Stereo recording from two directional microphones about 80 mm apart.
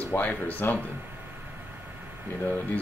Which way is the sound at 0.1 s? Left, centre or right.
Left.